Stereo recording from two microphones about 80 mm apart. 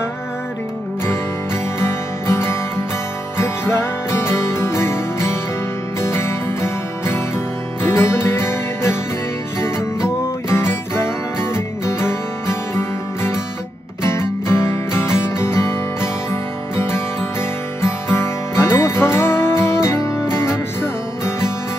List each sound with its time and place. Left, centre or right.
1.0 s music: left
10.0 s music: left
11.5 s guitar: left
14.0 s music: left